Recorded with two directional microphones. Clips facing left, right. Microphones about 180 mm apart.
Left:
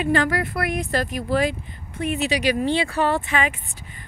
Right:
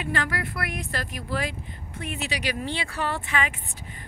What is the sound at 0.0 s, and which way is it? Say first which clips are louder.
Speech: left 8 dB; 25° left (ahead or behind).